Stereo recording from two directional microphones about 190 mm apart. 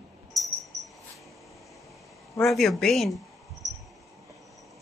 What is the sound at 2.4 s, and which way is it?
Speech, centre (ahead or behind).